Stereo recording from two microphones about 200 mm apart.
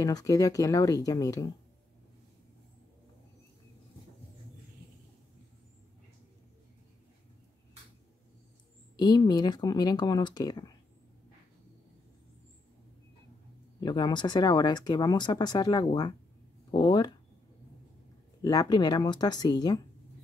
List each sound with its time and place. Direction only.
0.0 s speech: 15° left (ahead or behind)
8.9 s speech: 20° left (ahead or behind)
13.7 s speech: 20° left (ahead or behind)
18.4 s speech: 20° left (ahead or behind)